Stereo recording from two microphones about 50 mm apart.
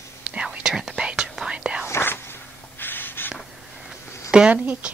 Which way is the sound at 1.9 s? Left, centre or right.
Left.